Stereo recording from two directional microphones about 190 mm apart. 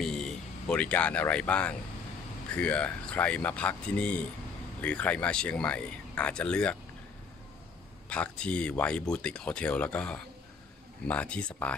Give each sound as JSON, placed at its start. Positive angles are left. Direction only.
{"t": 0.0, "sound": "speech", "side_deg": 5}
{"t": 8.1, "sound": "speech", "side_deg": 5}